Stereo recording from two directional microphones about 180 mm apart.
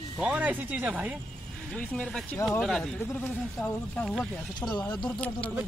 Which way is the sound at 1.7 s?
5° left (ahead or behind).